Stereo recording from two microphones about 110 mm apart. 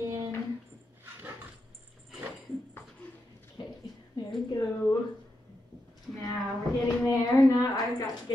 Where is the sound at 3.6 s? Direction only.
45° left (ahead or behind).